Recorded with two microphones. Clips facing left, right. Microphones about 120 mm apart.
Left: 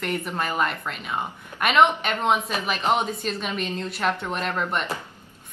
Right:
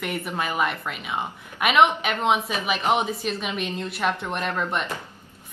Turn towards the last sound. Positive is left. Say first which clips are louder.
# even
turn(degrees=0)  # may be behind; listen again after turning